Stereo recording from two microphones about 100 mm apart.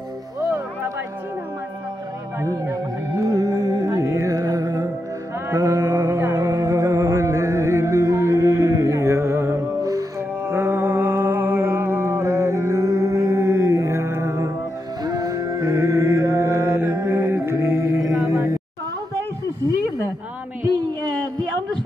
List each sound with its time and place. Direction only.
0.5 s a sound: 25° right (ahead or behind)
2.4 s music: 30° right (ahead or behind)
9.8 s music: 35° right (ahead or behind)
10.4 s music: 25° right (ahead or behind)